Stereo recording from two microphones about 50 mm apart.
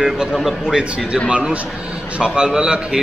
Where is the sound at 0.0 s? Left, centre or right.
Centre.